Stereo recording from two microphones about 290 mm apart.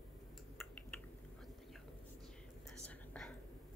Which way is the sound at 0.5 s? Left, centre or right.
Centre.